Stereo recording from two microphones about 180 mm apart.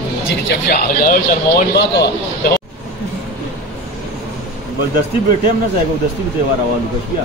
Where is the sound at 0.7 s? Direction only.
60° left (ahead or behind).